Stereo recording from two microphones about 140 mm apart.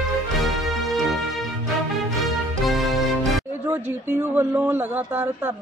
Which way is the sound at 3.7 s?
15° right (ahead or behind).